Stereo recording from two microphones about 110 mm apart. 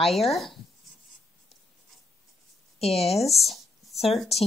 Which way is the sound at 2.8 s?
65° left (ahead or behind).